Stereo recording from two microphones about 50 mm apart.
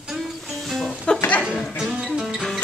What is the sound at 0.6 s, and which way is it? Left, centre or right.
Music, centre.